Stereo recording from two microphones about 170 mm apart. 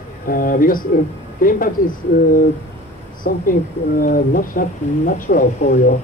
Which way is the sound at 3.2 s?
55° left (ahead or behind).